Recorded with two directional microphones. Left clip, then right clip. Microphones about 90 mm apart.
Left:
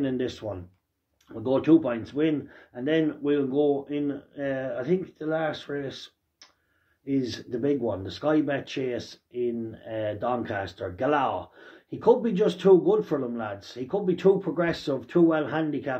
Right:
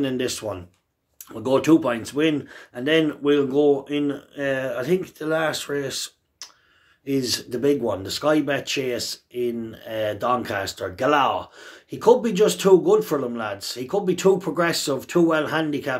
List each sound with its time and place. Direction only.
0.0 s speech: 35° right (ahead or behind)